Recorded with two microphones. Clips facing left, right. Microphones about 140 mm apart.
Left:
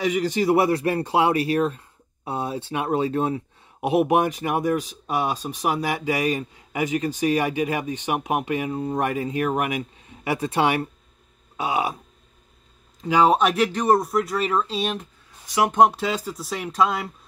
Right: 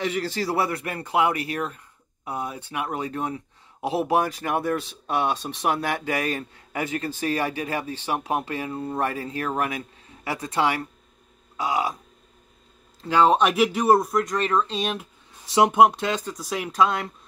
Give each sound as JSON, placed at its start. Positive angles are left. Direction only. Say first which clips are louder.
{"t": 0.0, "sound": "speech", "louder": "left 5 dB", "side_deg": 15}
{"t": 13.0, "sound": "speech", "louder": "left 1 dB", "side_deg": 10}
{"t": 13.4, "sound": "speech", "louder": "even", "side_deg": 0}
{"t": 15.4, "sound": "speech", "louder": "right 3 dB", "side_deg": -25}
{"t": 15.7, "sound": "speech", "louder": "even", "side_deg": 0}